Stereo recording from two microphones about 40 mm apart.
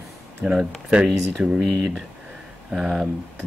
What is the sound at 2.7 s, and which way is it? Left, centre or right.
Speech, centre.